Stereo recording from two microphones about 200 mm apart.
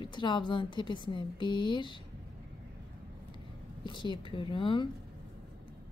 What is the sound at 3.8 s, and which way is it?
A woman's voice, 25° left (ahead or behind).